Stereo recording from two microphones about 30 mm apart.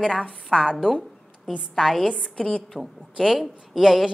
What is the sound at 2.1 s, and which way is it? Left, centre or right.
Speech, left.